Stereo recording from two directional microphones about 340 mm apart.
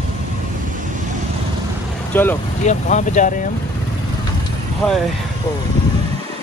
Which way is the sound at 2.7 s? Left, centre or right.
Left.